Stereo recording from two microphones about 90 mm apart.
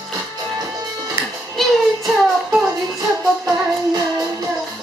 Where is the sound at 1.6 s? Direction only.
Centre (ahead or behind).